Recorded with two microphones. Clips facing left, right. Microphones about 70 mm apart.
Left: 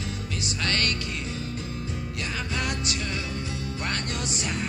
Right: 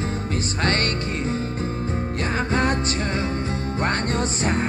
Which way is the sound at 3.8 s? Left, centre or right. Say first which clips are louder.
Right 9 dB; right.